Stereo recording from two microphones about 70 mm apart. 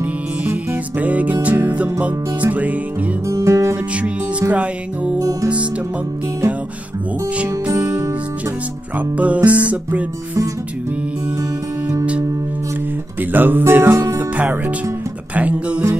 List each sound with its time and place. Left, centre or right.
0.5 s music: right
3.3 s music: right
3.9 s music: centre
8.9 s music: right
13.2 s music: right
14.3 s speech: right
15.3 s music: right